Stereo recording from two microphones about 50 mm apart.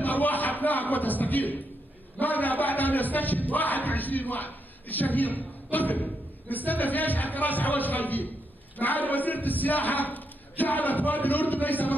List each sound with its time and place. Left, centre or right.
0.0 s a man's voice: left